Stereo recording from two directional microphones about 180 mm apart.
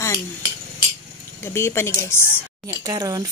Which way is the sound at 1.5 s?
15° left (ahead or behind).